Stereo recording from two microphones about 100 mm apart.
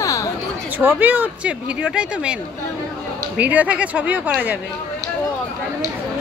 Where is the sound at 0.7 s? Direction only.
15° right (ahead or behind).